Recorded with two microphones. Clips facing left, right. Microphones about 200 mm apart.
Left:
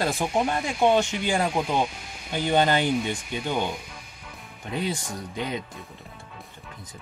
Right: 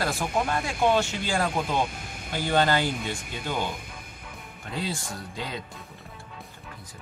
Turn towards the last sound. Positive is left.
turn(degrees=20)  # may be behind; listen again after turning